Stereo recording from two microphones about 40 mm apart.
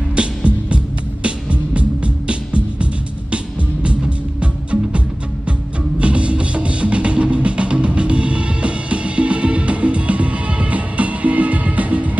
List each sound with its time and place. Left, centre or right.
0.1 s music: right